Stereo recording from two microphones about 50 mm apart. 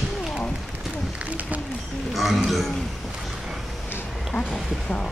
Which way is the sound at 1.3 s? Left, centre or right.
Right.